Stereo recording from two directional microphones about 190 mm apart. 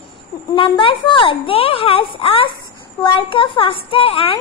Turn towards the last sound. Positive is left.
turn(degrees=30)  # may be behind; listen again after turning